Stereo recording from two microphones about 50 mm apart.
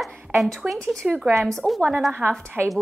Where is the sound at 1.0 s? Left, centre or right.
Right.